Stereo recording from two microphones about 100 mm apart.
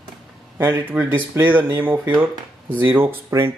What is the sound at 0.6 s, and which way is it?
Speech, 20° right (ahead or behind).